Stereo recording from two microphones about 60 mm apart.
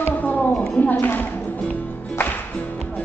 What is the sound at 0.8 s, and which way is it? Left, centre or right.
Speech, left.